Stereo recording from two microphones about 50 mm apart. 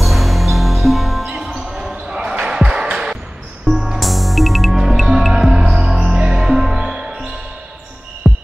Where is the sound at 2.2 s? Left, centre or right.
Centre.